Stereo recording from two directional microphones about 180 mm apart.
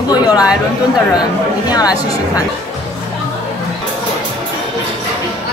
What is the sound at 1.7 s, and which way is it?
Speech, 20° left (ahead or behind).